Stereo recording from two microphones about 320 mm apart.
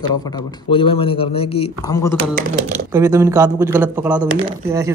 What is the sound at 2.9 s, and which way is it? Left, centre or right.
Speech, centre.